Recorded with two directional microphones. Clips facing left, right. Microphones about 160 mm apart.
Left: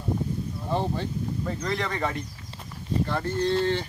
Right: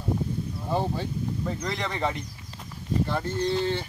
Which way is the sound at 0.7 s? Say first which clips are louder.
Even; 10° right (ahead or behind).